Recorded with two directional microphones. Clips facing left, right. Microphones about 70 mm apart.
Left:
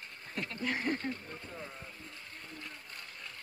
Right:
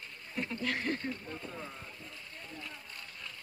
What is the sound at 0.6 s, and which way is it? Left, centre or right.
Speech, centre.